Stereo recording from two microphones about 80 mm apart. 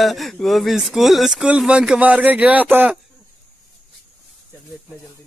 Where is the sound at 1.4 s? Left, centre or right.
Centre.